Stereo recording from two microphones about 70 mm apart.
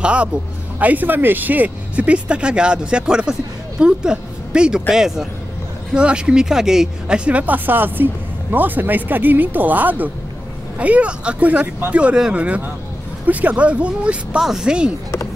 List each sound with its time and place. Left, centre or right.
0.0 s speech: centre